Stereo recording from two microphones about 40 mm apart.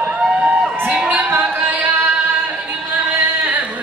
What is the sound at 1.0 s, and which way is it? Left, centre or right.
Music, right.